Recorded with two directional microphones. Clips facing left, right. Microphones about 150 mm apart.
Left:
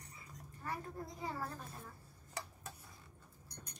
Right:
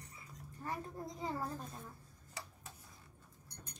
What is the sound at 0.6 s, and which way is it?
Speech, 20° right (ahead or behind).